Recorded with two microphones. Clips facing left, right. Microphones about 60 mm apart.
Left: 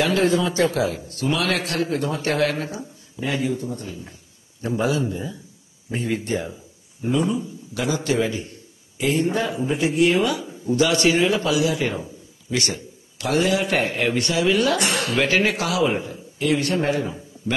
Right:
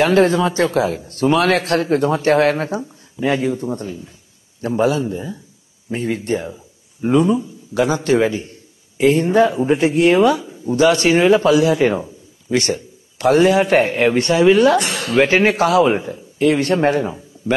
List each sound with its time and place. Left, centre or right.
0.0 s a man's voice: right
7.2 s a man's voice: right